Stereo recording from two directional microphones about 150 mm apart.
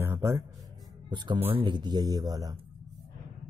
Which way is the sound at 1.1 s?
30° right (ahead or behind).